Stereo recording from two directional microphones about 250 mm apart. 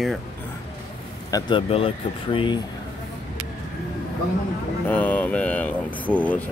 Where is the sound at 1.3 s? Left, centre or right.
Centre.